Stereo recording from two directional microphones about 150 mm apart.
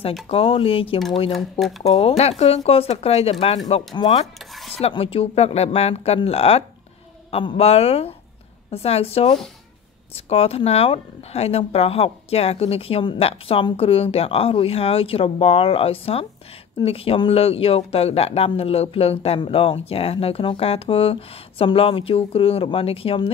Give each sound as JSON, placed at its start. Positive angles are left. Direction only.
{"t": 0.3, "sound": "speech", "side_deg": 40}
{"t": 1.3, "sound": "speech", "side_deg": 0}
{"t": 1.8, "sound": "speech", "side_deg": 40}
{"t": 3.9, "sound": "speech", "side_deg": 30}
{"t": 4.7, "sound": "speech", "side_deg": 40}